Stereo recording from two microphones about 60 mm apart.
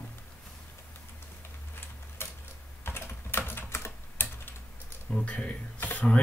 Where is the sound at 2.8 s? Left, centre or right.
Left.